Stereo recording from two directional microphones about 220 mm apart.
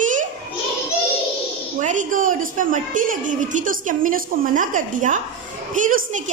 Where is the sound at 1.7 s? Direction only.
35° right (ahead or behind).